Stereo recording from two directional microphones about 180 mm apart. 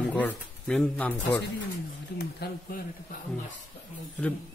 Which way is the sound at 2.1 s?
60° left (ahead or behind).